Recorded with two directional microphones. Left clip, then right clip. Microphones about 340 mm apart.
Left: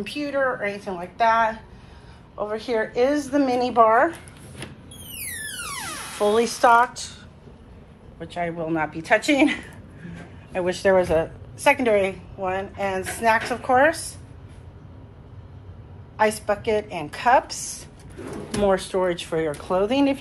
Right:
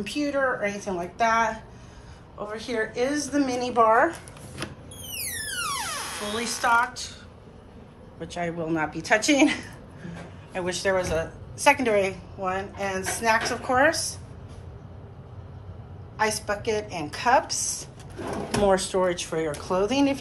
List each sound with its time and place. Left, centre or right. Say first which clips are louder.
0.0 s a woman's voice: left 1 dB; centre
6.3 s a woman's voice: left 6 dB; centre
8.2 s a woman's voice: left 3 dB; centre
16.2 s a woman's voice: left 4 dB; centre
17.5 s a woman's voice: right 4 dB; right
18.6 s a woman's voice: left 1 dB; centre